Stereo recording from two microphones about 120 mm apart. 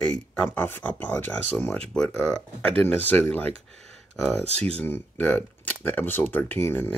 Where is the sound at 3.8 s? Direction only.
Centre (ahead or behind).